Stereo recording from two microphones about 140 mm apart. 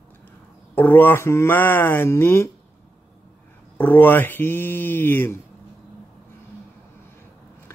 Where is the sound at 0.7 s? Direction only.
15° left (ahead or behind).